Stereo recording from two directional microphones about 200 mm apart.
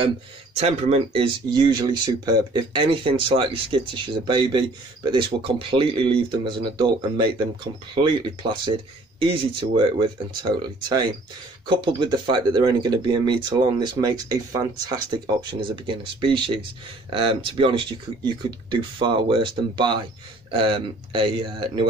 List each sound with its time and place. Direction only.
0.6 s speech: 30° right (ahead or behind)